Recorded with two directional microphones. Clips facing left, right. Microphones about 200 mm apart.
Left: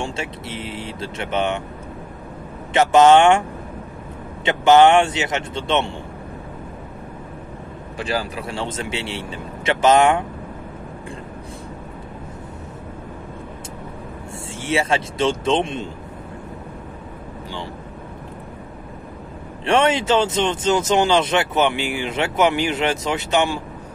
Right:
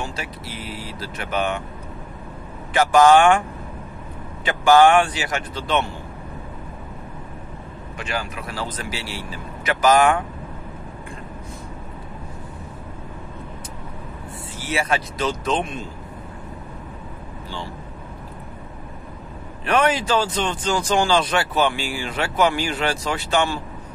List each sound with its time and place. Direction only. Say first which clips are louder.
0.0 s speech: left 3 dB; 25° left (ahead or behind)
2.7 s speech: left 2 dB; 25° left (ahead or behind)
4.5 s speech: left 2 dB; 20° left (ahead or behind)
8.0 s speech: left 4 dB; 35° left (ahead or behind)
14.6 s speech: left 3 dB; 25° left (ahead or behind)
19.6 s speech: left 2 dB; 25° left (ahead or behind)